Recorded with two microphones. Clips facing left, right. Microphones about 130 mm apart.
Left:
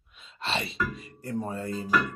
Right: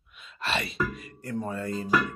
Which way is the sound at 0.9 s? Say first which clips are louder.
Even; 30° left (ahead or behind).